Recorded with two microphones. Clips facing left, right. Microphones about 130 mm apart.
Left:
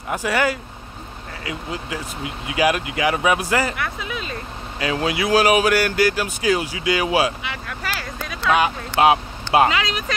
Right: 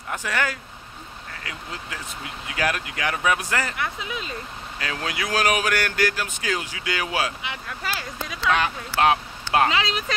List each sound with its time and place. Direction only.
0.1 s speech: 10° left (ahead or behind)
3.8 s speech: 20° right (ahead or behind)
4.7 s speech: 10° left (ahead or behind)
7.4 s speech: 20° right (ahead or behind)
8.5 s speech: 15° left (ahead or behind)
9.7 s speech: 25° right (ahead or behind)